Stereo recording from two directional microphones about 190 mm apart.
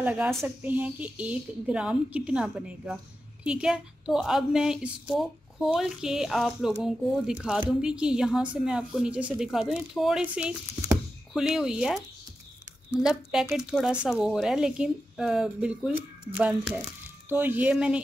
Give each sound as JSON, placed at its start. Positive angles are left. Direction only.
{"t": 0.0, "sound": "a woman's voice", "side_deg": -5}